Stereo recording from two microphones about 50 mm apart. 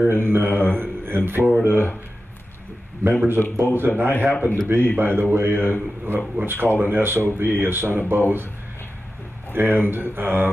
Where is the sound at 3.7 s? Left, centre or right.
Right.